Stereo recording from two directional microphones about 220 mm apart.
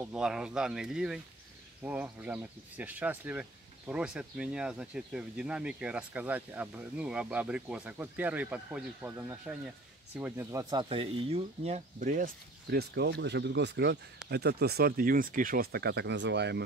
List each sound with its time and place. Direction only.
0.0 s speech: 5° right (ahead or behind); by 16.6 s 50° right (ahead or behind)